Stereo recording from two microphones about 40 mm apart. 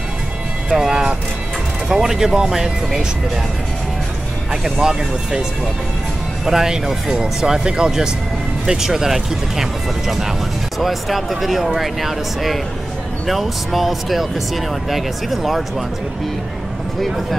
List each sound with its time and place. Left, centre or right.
0.7 s speech: centre
4.5 s speech: centre
6.4 s speech: centre